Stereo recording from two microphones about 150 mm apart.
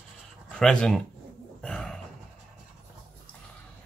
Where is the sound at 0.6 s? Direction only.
5° left (ahead or behind).